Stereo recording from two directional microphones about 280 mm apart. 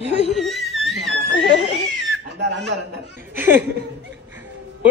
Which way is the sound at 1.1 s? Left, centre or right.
Right.